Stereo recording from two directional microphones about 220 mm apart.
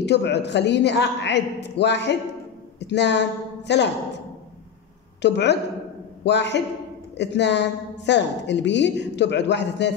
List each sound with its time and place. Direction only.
0.0 s a woman's voice: 50° left (ahead or behind)
5.2 s a woman's voice: 50° left (ahead or behind)